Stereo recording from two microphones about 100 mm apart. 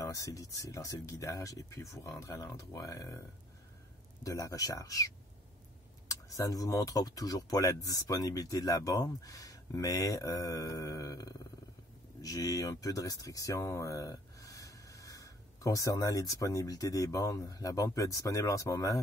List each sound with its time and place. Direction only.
0.0 s speech: 35° left (ahead or behind)
4.2 s speech: 30° left (ahead or behind)